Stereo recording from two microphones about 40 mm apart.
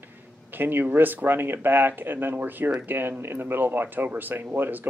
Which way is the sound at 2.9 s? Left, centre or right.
Right.